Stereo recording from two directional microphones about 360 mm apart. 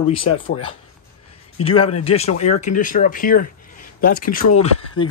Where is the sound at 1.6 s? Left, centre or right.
Centre.